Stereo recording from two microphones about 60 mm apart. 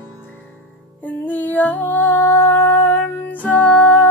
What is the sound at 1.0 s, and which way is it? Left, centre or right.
Music, left.